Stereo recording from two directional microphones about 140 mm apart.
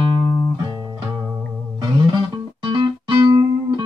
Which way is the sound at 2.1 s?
35° right (ahead or behind).